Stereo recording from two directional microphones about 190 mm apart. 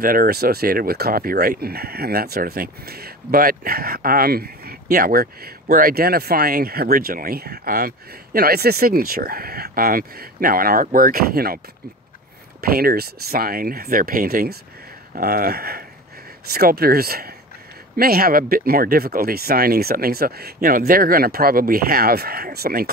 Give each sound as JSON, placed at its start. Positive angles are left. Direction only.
{"t": 0.0, "sound": "speech", "side_deg": -50}
{"t": 12.6, "sound": "speech", "side_deg": -50}